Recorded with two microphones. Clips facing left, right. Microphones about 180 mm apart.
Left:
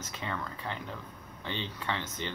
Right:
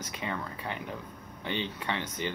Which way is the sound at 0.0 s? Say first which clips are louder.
Right 2 dB; 15° right (ahead or behind).